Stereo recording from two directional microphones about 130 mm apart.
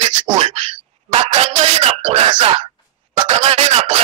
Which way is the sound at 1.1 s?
50° right (ahead or behind).